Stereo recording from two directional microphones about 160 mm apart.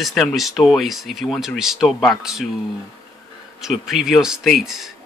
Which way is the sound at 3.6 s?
Centre (ahead or behind).